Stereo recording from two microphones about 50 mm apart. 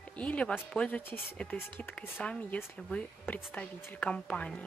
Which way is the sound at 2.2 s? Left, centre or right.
Centre.